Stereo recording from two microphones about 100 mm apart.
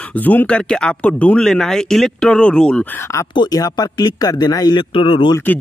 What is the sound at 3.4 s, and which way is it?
Speech, 40° left (ahead or behind).